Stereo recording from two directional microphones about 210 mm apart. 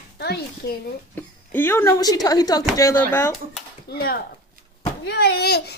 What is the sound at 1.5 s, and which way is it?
Speech, 10° left (ahead or behind).